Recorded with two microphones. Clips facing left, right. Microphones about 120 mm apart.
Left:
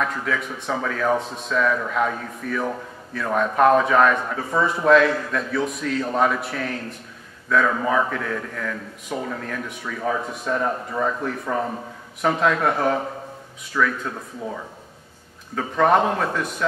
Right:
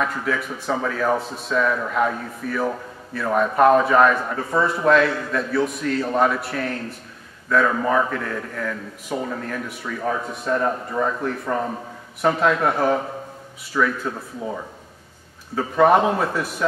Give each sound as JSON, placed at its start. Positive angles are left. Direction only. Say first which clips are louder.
{"t": 0.0, "sound": "a man's voice", "louder": "right 1 dB", "side_deg": -5}
{"t": 15.5, "sound": "speech", "louder": "right 2 dB", "side_deg": -5}